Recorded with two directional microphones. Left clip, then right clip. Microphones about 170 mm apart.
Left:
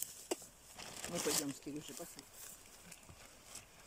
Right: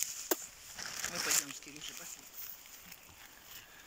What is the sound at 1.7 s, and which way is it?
Speech, 50° left (ahead or behind).